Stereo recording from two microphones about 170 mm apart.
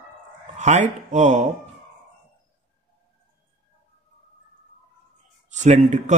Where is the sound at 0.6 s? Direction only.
45° right (ahead or behind).